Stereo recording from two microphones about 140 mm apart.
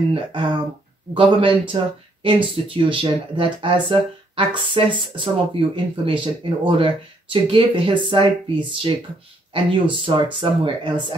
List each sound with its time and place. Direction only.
0.1 s speech: 35° right (ahead or behind)